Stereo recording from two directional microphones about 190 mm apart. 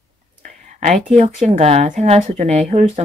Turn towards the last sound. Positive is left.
turn(degrees=-35)  # may be behind; listen again after turning